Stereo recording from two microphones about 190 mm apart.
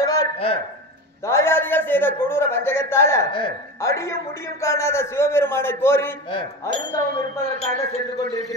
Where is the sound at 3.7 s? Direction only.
15° left (ahead or behind).